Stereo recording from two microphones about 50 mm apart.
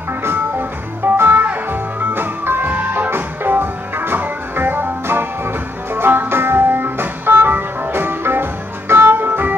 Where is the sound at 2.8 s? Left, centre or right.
Right.